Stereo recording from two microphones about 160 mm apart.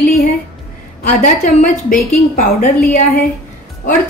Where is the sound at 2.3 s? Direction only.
60° left (ahead or behind).